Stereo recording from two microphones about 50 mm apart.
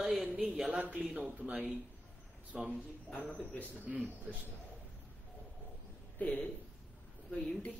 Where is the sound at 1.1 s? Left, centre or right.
Right.